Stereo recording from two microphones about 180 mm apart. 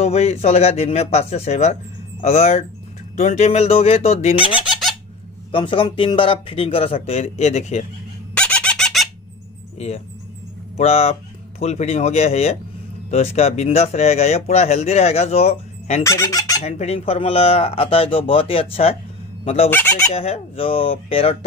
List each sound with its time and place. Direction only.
0.0 s speech: 35° left (ahead or behind)
8.4 s squeak: 5° left (ahead or behind)
9.8 s speech: 35° left (ahead or behind)
16.0 s fowl: 15° left (ahead or behind)
16.6 s speech: 35° left (ahead or behind)
19.7 s speech: 10° left (ahead or behind)
20.2 s speech: 30° left (ahead or behind)